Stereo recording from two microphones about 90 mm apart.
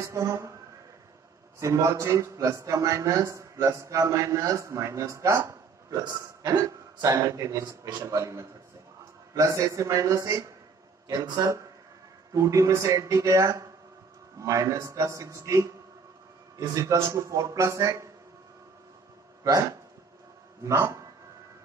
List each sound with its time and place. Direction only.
0.0 s a man's voice: 35° right (ahead or behind)
1.6 s a man's voice: 35° right (ahead or behind)
11.3 s a man's voice: 30° right (ahead or behind)
19.4 s a man's voice: 40° right (ahead or behind)